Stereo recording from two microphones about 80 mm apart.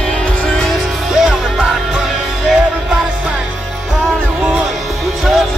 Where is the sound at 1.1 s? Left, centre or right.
Centre.